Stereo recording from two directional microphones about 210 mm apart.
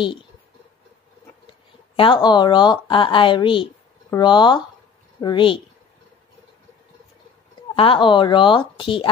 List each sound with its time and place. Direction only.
2.0 s speech: 20° left (ahead or behind)
7.7 s speech: 25° left (ahead or behind)